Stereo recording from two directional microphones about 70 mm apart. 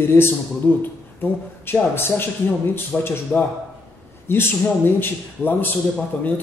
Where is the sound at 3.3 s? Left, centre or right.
Left.